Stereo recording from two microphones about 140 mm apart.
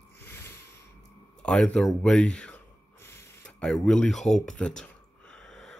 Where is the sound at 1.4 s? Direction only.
5° left (ahead or behind).